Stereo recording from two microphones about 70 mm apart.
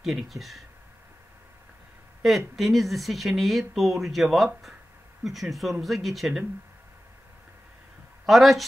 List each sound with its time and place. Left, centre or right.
0.0 s speech: centre
2.2 s speech: centre
8.3 s speech: centre